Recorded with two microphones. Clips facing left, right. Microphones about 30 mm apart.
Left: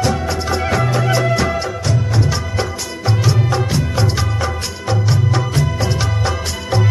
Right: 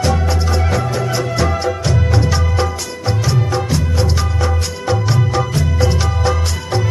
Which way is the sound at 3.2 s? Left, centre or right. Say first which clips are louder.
Even; centre.